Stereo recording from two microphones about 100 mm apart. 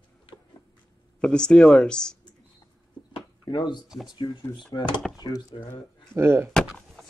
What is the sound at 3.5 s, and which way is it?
Speech, 50° left (ahead or behind).